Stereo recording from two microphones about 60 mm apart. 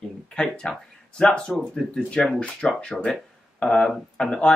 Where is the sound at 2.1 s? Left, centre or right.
Centre.